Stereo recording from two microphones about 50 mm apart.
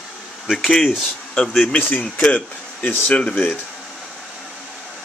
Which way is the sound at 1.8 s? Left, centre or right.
Left.